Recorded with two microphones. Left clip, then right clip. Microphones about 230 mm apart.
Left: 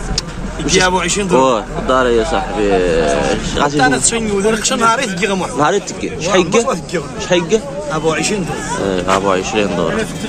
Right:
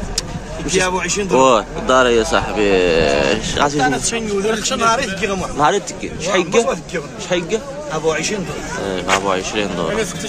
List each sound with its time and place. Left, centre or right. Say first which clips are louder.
0.7 s a man's voice: left 4 dB; centre
1.3 s speech: right 1 dB; centre
3.7 s a man's voice: left 4 dB; centre